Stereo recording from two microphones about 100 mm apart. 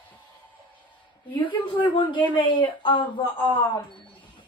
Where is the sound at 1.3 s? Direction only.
55° left (ahead or behind).